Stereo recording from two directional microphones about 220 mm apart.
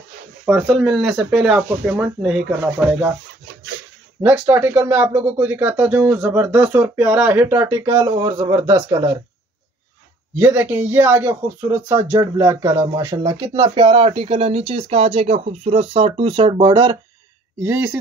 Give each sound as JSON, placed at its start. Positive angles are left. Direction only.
{"t": 0.5, "sound": "speech", "side_deg": 0}
{"t": 4.2, "sound": "speech", "side_deg": -10}
{"t": 10.3, "sound": "speech", "side_deg": -10}
{"t": 17.6, "sound": "speech", "side_deg": -10}